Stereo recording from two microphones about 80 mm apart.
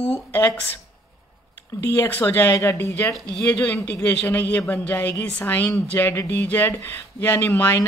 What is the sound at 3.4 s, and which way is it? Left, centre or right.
Speech, left.